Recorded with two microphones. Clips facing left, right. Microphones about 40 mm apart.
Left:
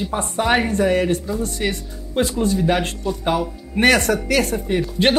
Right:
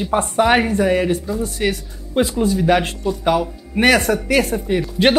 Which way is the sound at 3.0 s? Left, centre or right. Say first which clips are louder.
Right 3 dB; centre.